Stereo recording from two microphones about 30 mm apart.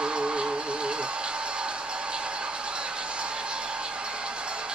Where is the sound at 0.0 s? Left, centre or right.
Right.